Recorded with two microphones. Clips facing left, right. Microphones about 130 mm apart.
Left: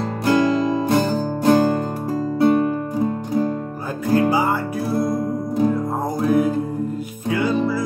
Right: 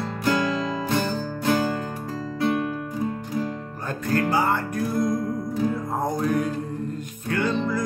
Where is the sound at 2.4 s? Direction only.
30° left (ahead or behind).